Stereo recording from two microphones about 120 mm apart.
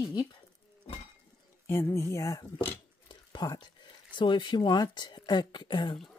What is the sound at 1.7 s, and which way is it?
Speech, 20° left (ahead or behind).